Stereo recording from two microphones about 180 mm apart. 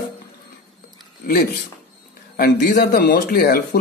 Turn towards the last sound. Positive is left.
turn(degrees=60)  # may be behind; listen again after turning